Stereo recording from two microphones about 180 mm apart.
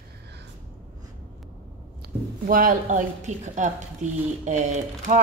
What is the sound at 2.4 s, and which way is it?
A woman's voice, 50° right (ahead or behind).